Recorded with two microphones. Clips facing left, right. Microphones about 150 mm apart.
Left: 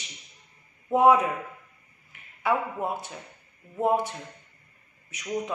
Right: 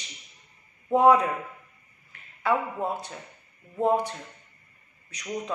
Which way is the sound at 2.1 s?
15° left (ahead or behind).